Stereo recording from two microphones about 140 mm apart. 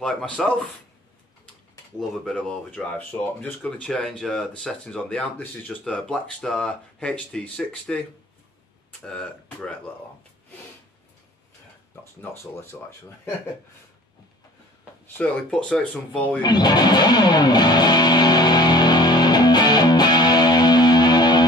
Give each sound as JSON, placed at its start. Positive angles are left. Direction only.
{"t": 0.0, "sound": "speech", "side_deg": 5}
{"t": 2.0, "sound": "speech", "side_deg": 0}
{"t": 11.9, "sound": "speech", "side_deg": 15}
{"t": 15.1, "sound": "speech", "side_deg": 5}
{"t": 16.4, "sound": "music", "side_deg": 30}